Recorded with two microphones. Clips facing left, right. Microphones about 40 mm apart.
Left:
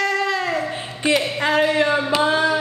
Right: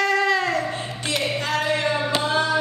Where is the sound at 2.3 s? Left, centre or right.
Centre.